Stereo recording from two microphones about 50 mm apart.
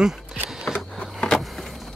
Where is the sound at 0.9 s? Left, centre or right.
Centre.